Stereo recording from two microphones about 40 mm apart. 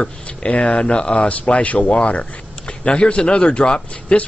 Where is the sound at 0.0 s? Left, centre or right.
Left.